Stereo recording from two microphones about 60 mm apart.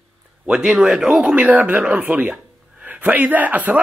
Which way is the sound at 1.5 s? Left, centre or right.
Right.